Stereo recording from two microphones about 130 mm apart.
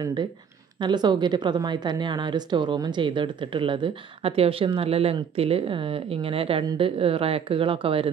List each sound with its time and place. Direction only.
0.0 s a woman's voice: 35° right (ahead or behind)